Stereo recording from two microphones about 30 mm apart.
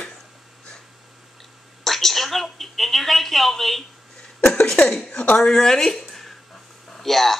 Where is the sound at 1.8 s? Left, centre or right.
Centre.